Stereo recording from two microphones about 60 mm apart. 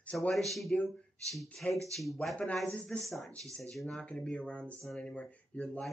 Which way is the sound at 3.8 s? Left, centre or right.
Centre.